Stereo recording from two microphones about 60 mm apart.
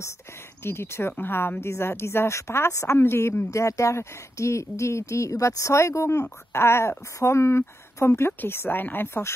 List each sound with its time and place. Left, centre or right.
0.7 s speech: left
3.5 s speech: left
6.5 s speech: left